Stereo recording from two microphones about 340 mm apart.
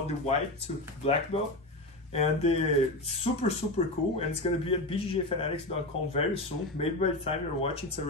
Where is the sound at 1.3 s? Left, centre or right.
Centre.